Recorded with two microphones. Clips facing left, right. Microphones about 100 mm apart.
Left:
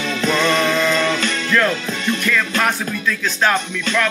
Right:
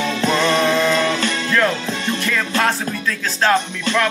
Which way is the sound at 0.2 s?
40° right (ahead or behind).